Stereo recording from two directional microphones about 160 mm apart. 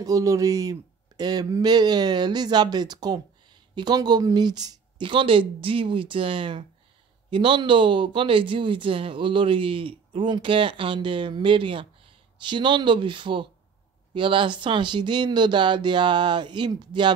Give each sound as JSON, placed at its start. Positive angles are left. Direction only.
{"t": 0.0, "sound": "speech", "side_deg": -20}